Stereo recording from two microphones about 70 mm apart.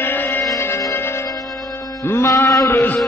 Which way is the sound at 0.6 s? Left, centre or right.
Left.